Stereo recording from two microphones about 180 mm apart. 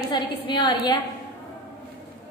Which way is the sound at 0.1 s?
25° left (ahead or behind).